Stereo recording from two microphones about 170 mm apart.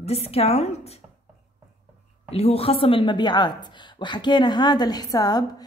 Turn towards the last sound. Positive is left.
turn(degrees=20)  # may be behind; listen again after turning